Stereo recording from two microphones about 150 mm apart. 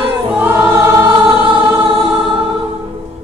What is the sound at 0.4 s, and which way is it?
Choir, 10° right (ahead or behind).